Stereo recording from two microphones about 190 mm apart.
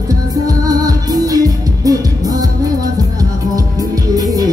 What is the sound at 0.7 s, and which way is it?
Music, 20° right (ahead or behind).